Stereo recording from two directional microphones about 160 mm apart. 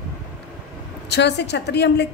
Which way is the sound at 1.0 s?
90° left.